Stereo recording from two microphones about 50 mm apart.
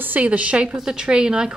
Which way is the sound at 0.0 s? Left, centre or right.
Right.